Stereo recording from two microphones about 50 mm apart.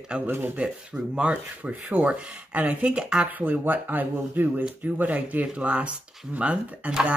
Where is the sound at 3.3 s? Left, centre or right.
Right.